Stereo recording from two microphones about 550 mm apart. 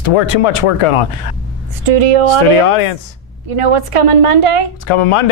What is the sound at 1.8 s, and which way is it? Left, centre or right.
Speech, right.